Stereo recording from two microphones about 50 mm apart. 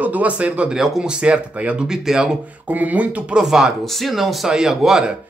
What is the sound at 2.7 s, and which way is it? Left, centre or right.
Speech, right.